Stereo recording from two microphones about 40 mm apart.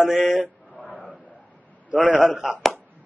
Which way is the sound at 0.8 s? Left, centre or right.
Right.